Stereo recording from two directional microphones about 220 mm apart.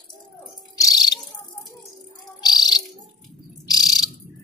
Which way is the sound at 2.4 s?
20° left (ahead or behind).